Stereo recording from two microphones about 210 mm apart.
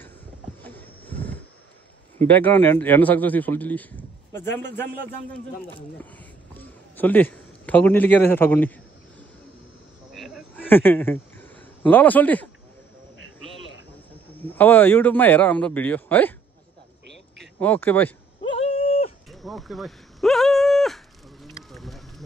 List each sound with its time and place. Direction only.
0.6 s a sound: 10° left (ahead or behind)
2.4 s a man's voice: 10° left (ahead or behind)
5.9 s a man's voice: 10° left (ahead or behind)
10.1 s insect: centre (ahead or behind)
10.6 s speech: 10° left (ahead or behind)
14.3 s a man's voice: 10° left (ahead or behind)
17.6 s a man's voice: 10° left (ahead or behind)
18.6 s a sound: 30° left (ahead or behind)
19.2 s a sound: centre (ahead or behind)